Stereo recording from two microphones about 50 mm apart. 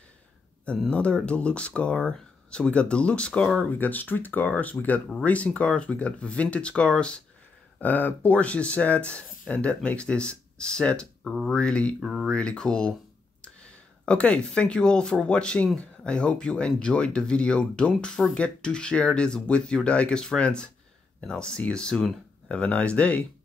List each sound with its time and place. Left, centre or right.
0.8 s speech: left
3.7 s speech: left
7.8 s speech: left
12.0 s speech: centre
12.3 s speech: centre
14.0 s speech: left
22.5 s speech: left